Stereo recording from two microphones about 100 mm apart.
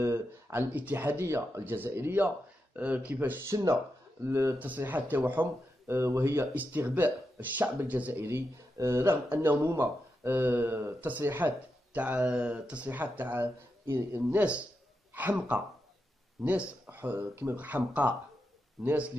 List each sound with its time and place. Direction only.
0.0 s speech: 25° right (ahead or behind)
4.6 s speech: 20° right (ahead or behind)